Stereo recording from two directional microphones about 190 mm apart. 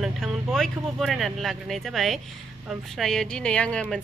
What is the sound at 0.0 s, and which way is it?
Speech, centre (ahead or behind).